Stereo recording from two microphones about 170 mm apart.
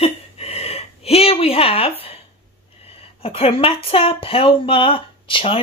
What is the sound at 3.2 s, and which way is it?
Speech, 35° left (ahead or behind).